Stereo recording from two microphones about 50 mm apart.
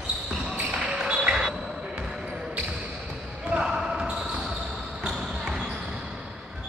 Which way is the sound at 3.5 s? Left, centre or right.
Centre.